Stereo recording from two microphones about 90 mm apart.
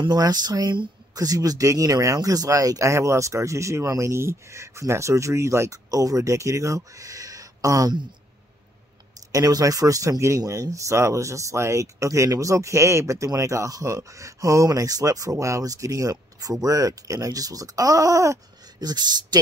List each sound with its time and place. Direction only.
0.0 s speech: 50° right (ahead or behind)
9.3 s speech: 40° right (ahead or behind)
18.9 s speech: 50° right (ahead or behind)